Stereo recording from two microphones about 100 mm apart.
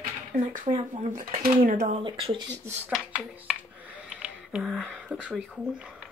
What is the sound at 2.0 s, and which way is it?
Speech, 65° right (ahead or behind).